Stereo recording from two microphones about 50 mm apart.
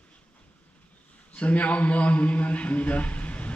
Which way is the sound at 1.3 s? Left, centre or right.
Left.